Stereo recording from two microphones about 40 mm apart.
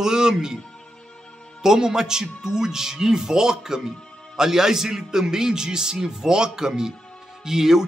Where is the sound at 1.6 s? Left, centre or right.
Centre.